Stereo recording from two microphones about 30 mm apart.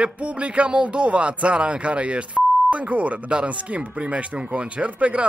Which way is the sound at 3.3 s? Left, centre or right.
Right.